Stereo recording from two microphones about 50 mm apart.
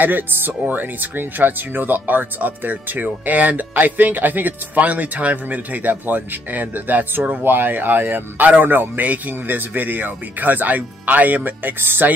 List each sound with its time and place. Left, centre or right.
0.0 s speech: right